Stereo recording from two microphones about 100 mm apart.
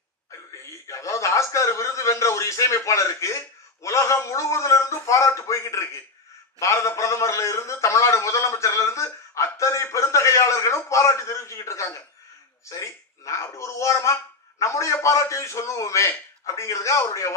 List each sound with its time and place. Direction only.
0.7 s a man's voice: 30° left (ahead or behind)